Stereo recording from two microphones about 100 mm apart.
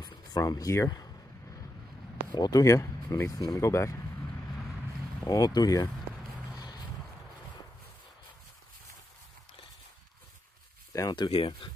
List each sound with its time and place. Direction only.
0.0 s a sound: 45° left (ahead or behind)
2.3 s speech: 45° left (ahead or behind)
2.6 s speech: 30° left (ahead or behind)
5.2 s speech: 40° left (ahead or behind)
10.9 s a sound: 35° left (ahead or behind)
11.1 s speech: 60° left (ahead or behind)